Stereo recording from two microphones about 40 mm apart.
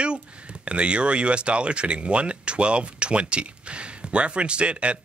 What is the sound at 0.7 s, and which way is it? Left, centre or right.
Speech, right.